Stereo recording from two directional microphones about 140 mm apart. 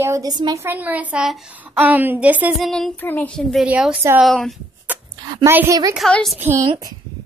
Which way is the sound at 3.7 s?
10° right (ahead or behind).